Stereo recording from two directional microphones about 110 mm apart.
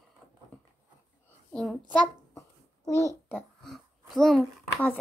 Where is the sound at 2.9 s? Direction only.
30° right (ahead or behind).